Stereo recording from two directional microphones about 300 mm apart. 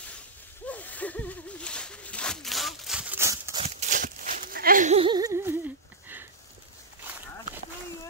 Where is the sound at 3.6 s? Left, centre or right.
Right; by 6.2 s centre.